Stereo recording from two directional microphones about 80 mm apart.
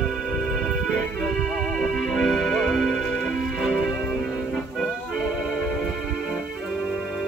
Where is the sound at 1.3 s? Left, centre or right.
Centre.